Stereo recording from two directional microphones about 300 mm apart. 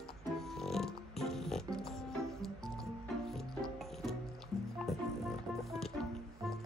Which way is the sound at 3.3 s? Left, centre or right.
Centre.